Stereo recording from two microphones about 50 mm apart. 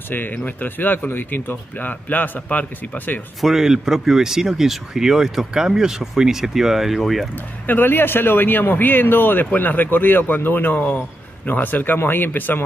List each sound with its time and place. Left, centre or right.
0.6 s speech: left
3.3 s speech: centre
7.6 s speech: left